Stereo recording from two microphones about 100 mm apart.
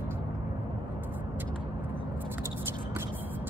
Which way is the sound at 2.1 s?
20° right (ahead or behind).